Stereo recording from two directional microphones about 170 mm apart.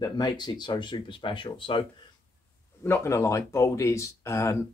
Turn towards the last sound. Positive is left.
turn(degrees=20)  # may be behind; listen again after turning